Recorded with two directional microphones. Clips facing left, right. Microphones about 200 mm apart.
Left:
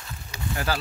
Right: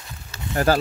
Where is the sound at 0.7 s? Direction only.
45° right (ahead or behind).